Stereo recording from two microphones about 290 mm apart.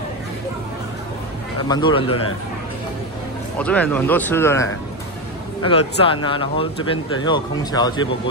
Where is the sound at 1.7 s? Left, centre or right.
Centre.